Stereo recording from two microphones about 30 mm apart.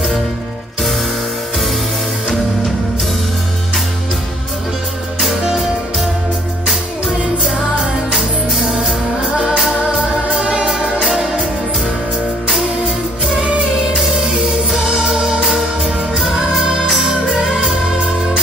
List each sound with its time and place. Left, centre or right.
9.8 s music: right
12.5 s music: centre
14.3 s music: centre
17.4 s music: right